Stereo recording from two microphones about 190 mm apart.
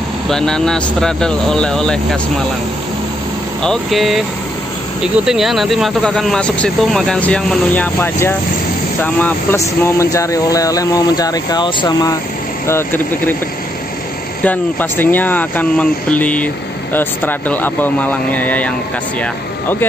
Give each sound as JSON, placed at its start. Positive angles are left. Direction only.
{"t": 0.3, "sound": "speech", "side_deg": 5}
{"t": 3.6, "sound": "speech", "side_deg": 0}
{"t": 12.6, "sound": "speech", "side_deg": 10}
{"t": 14.4, "sound": "speech", "side_deg": 10}